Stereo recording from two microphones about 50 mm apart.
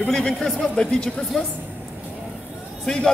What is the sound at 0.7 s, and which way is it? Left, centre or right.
Speech, centre.